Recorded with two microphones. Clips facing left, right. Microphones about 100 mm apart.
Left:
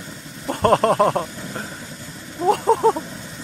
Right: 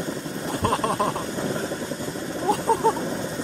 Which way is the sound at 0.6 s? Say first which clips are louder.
Left 8 dB; 55° left (ahead or behind).